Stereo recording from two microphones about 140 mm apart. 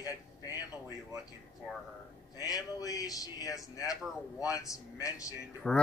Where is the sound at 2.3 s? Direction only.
25° left (ahead or behind).